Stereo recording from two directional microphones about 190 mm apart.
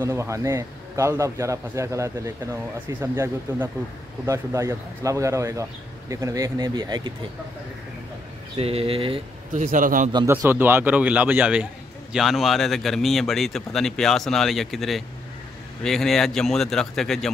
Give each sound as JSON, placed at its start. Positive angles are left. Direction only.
{"t": 0.0, "sound": "a man's voice", "side_deg": -15}
{"t": 8.5, "sound": "speech", "side_deg": -30}
{"t": 9.5, "sound": "a man's voice", "side_deg": -45}
{"t": 10.1, "sound": "a man's voice", "side_deg": -15}